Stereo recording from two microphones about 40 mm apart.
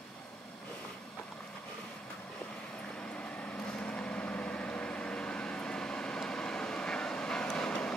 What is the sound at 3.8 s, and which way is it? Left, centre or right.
Vehicle, left.